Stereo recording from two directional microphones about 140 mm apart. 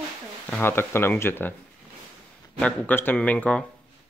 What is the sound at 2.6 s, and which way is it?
Speech, 10° left (ahead or behind).